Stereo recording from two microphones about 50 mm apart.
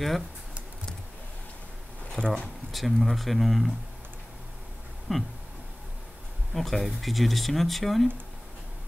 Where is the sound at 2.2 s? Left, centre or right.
Right.